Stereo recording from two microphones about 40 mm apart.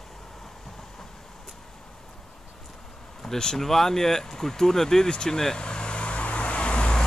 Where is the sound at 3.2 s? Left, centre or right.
Centre.